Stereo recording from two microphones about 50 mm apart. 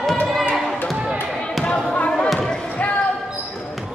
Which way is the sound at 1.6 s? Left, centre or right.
Left.